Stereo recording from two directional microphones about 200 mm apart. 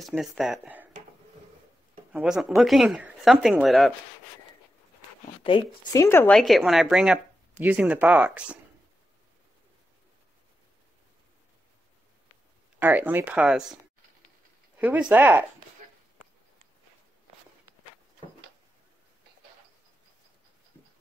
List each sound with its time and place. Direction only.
0.0 s speech: centre (ahead or behind)
2.1 s speech: 5° right (ahead or behind)
5.4 s speech: 25° left (ahead or behind)
5.9 s speech: 10° left (ahead or behind); by 8.5 s 5° right (ahead or behind)
12.7 s speech: 10° right (ahead or behind)
14.8 s speech: 5° right (ahead or behind)